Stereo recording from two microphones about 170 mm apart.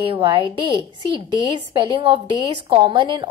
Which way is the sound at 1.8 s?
30° right (ahead or behind).